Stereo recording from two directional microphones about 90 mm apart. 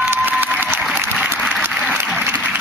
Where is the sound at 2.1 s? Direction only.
15° right (ahead or behind).